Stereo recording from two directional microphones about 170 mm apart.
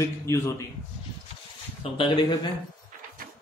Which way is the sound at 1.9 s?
30° left (ahead or behind).